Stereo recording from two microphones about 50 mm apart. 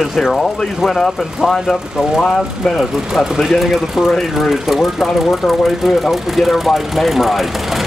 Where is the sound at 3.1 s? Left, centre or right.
Centre.